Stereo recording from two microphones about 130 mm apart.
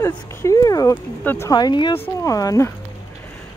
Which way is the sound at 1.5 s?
35° left (ahead or behind).